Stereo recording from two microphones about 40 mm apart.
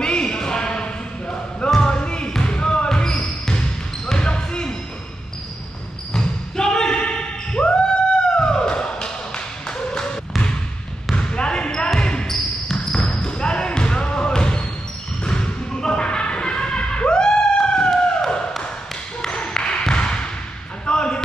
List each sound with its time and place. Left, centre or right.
0.0 s a sound: left
1.8 s basketball bounce: left
6.1 s basketball bounce: centre
8.4 s music: left
11.1 s basketball bounce: left
12.8 s basketball bounce: centre
15.2 s a sound: left
20.8 s basketball bounce: left